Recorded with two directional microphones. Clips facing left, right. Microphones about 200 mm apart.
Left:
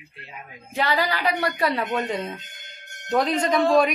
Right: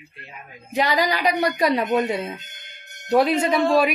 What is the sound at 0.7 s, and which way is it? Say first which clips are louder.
Speech: right 3 dB; 15° right (ahead or behind).